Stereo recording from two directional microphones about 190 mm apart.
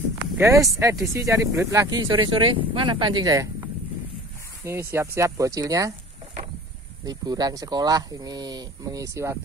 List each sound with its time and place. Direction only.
0.4 s speech: 15° right (ahead or behind)
7.1 s speech: 20° right (ahead or behind)